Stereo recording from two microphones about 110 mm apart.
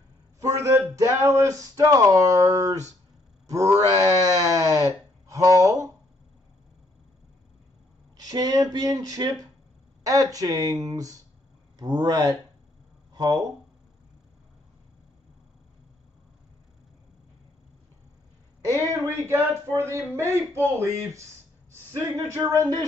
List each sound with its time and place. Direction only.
0.4 s speech: 25° right (ahead or behind)
8.3 s speech: 35° right (ahead or behind)
19.0 s speech: 25° right (ahead or behind)